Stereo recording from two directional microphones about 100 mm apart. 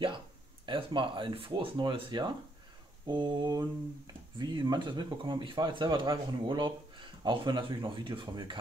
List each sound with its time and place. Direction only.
0.7 s speech: 55° right (ahead or behind)